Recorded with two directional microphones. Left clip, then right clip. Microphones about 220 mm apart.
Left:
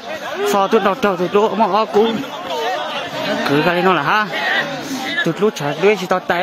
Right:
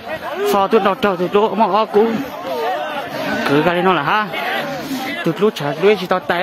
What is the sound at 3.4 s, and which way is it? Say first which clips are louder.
Speech: even; 5° right (ahead or behind).